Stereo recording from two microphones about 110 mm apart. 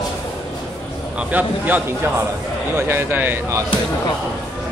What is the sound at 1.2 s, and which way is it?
A man's voice, 15° right (ahead or behind).